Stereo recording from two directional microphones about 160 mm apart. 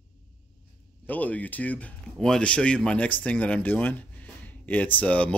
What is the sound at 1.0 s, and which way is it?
Speech, 10° left (ahead or behind).